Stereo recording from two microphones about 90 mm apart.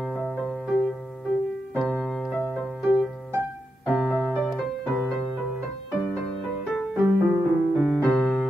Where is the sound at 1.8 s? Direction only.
5° left (ahead or behind).